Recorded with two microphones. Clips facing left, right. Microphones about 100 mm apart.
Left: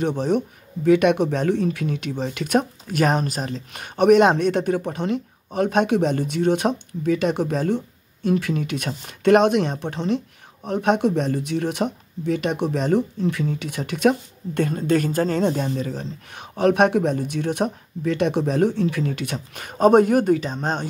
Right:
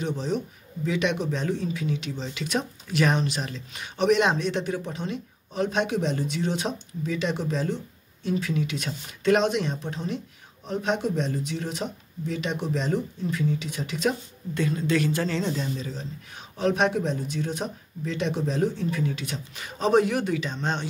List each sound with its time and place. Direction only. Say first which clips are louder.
0.0 s speech: left 7 dB; 60° left (ahead or behind); by 20.9 s 45° left (ahead or behind)